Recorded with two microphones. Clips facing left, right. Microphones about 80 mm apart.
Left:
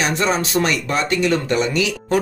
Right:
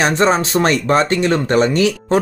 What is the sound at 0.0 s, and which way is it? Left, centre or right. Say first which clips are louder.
Speech: right 5 dB; right.